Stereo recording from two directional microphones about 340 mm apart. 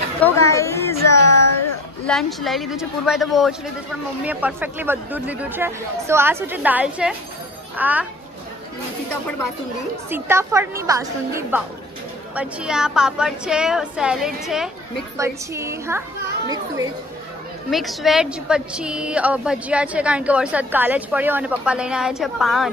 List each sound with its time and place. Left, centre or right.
0.2 s speech: centre
1.0 s a sound: left
2.0 s a woman's voice: centre
10.0 s a woman's voice: centre
17.6 s a woman's voice: centre